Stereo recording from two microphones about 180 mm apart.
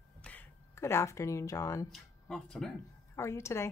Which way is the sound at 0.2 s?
10° left (ahead or behind).